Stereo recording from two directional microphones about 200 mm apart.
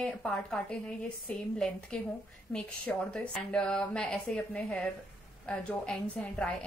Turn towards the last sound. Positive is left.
turn(degrees=5)  # may be behind; listen again after turning